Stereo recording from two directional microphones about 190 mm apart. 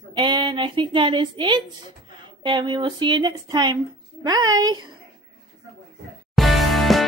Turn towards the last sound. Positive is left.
turn(degrees=0)  # may be behind; listen again after turning